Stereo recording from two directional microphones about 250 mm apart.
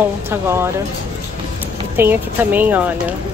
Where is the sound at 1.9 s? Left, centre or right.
Centre.